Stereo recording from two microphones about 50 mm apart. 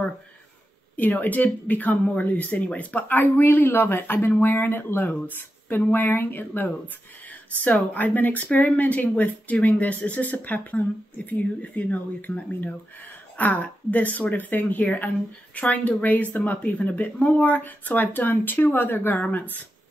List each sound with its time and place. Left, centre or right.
0.9 s speech: left